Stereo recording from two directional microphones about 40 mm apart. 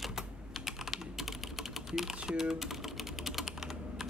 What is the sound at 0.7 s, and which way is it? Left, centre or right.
Typing, centre.